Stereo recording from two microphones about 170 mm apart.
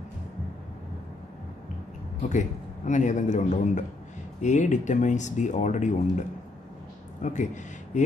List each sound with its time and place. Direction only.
2.2 s speech: 45° left (ahead or behind)